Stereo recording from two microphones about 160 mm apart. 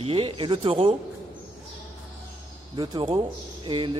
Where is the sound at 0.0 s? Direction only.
35° right (ahead or behind).